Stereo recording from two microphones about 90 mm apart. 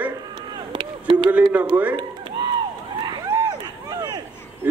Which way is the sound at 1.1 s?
60° right (ahead or behind).